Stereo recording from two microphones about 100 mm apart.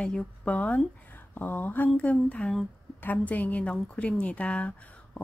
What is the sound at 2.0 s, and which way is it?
Speech, 15° left (ahead or behind).